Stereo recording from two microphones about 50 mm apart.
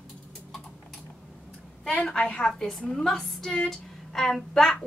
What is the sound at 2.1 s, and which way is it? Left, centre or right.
Speech, left.